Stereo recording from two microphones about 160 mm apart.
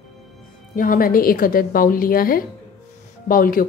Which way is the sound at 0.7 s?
60° left (ahead or behind).